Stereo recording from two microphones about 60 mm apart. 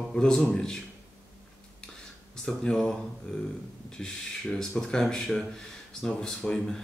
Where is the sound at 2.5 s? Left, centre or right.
Centre.